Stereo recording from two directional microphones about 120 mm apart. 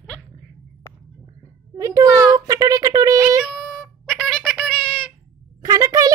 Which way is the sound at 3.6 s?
5° left (ahead or behind).